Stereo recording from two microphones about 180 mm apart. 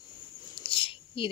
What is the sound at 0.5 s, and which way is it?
Whispering, 30° left (ahead or behind).